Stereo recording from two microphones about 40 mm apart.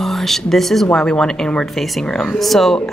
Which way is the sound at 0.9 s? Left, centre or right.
Centre.